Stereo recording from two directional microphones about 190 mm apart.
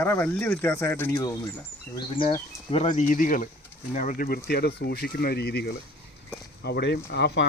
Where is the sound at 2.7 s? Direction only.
40° left (ahead or behind).